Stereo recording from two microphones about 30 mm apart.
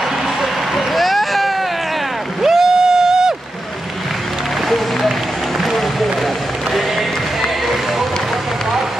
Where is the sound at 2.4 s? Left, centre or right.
Centre.